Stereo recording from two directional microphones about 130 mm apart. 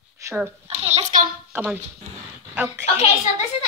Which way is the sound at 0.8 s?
55° right (ahead or behind).